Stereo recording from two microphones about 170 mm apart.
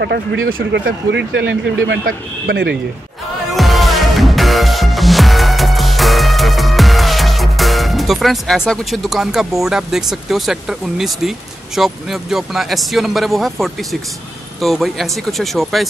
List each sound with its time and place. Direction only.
0.0 s speech: 85° right
3.5 s music: centre (ahead or behind)
14.6 s speech: centre (ahead or behind)